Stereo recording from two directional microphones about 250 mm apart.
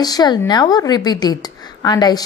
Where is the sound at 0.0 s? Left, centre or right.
Centre.